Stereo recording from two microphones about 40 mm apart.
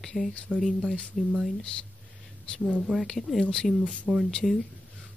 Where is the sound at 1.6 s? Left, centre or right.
Left.